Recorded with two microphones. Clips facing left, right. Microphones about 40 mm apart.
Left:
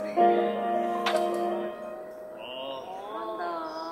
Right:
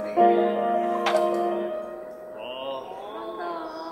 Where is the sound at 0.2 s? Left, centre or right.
Centre.